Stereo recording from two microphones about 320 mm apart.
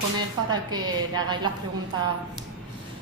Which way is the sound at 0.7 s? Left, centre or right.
Centre.